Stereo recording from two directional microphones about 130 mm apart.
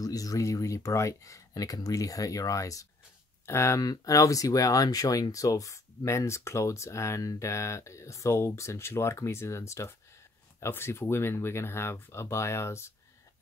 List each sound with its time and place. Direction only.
0.0 s speech: 25° left (ahead or behind)